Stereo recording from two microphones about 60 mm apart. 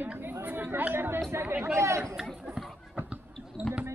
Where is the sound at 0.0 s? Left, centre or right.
Right.